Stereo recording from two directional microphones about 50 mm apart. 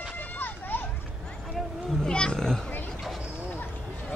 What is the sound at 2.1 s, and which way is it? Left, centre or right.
Children playing, centre.